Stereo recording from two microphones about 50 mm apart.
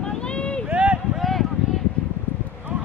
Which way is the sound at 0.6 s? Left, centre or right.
Right.